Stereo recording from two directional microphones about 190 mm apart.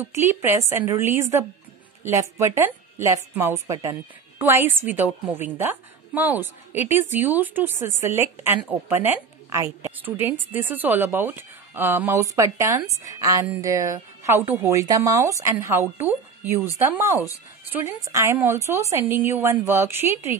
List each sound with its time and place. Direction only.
0.0 s a woman's voice: 10° right (ahead or behind)